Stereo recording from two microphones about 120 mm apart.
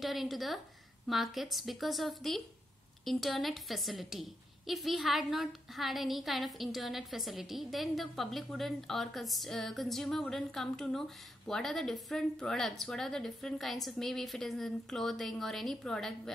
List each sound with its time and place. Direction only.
0.0 s a woman's voice: centre (ahead or behind)